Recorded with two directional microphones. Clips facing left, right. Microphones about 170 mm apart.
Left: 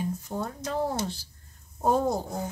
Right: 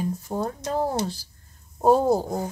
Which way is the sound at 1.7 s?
30° right (ahead or behind).